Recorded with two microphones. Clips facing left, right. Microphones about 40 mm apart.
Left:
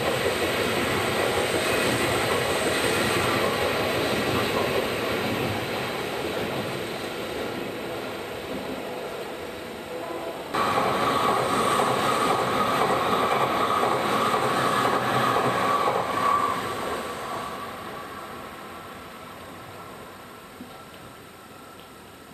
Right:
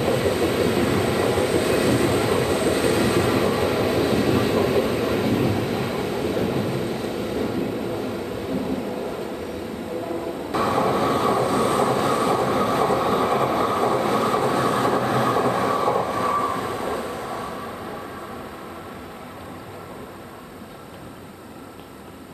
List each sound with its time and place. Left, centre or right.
0.0 s train: left